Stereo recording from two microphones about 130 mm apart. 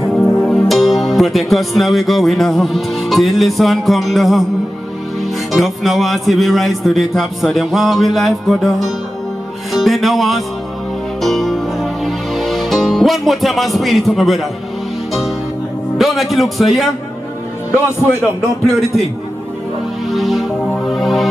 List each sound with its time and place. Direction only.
0.2 s music: 20° left (ahead or behind)
0.5 s speech: centre (ahead or behind)
11.1 s music: centre (ahead or behind)
16.0 s speech: centre (ahead or behind)
20.1 s speech: centre (ahead or behind)